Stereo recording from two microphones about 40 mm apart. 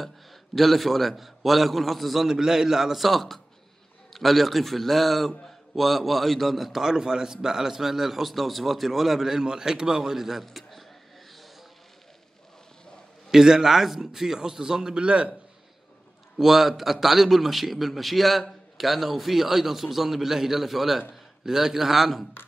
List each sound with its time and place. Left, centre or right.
0.6 s a man's voice: centre
2.2 s a man's voice: centre
10.4 s a sound: centre
13.3 s a man's voice: centre
15.0 s a man's voice: right
16.3 s a man's voice: centre